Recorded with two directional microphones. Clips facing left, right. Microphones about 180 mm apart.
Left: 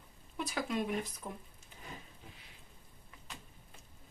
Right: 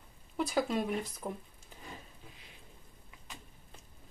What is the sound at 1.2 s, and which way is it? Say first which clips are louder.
Speech: right 5 dB; 35° right (ahead or behind).